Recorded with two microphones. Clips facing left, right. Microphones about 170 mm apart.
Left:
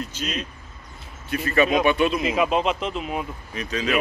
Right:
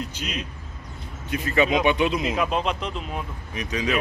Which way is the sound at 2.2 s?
5° left (ahead or behind).